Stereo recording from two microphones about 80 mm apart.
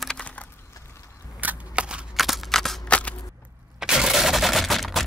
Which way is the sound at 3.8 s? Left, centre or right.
Centre.